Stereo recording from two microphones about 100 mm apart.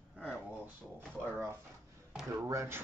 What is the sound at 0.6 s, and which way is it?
Speech, 15° right (ahead or behind).